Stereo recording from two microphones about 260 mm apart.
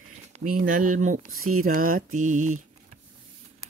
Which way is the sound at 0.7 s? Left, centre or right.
Right.